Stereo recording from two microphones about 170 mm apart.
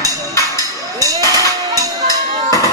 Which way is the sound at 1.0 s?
20° right (ahead or behind).